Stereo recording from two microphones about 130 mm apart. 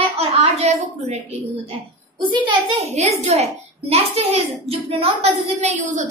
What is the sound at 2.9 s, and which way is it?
A child's voice, 55° right (ahead or behind).